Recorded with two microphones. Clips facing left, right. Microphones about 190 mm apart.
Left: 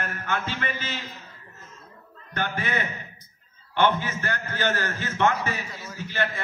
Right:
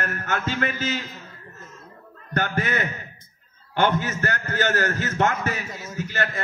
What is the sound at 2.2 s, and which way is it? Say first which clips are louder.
A man's voice: right 4 dB; 45° right (ahead or behind).